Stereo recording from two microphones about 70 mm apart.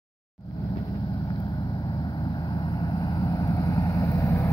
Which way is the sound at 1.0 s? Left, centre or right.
Left.